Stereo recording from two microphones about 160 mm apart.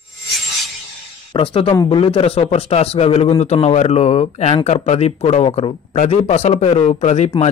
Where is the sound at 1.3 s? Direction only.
35° left (ahead or behind).